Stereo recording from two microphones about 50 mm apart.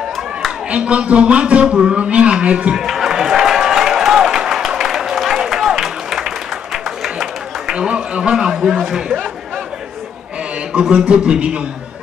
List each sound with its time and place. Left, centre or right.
0.7 s a man's voice: right
2.7 s a sound: centre
7.7 s speech: right
11.1 s a man's voice: right